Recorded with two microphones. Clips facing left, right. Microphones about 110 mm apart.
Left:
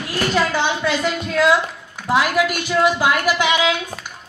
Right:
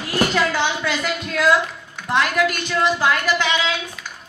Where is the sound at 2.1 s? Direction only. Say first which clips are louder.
Left 2 dB; 5° left (ahead or behind).